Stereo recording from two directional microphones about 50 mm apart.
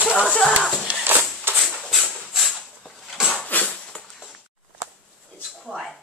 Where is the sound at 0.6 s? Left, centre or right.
Centre.